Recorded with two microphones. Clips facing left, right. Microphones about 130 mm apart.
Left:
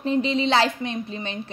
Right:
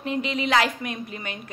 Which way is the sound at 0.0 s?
30° left (ahead or behind).